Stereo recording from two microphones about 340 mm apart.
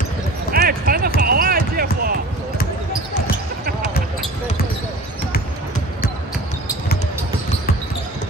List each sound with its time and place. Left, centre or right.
0.5 s basketball bounce: right